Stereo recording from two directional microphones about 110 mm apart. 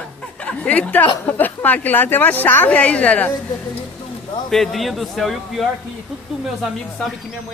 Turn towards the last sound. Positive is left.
turn(degrees=0)  # may be behind; listen again after turning